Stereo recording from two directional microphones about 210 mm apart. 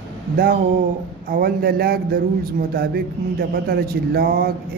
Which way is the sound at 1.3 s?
45° right (ahead or behind).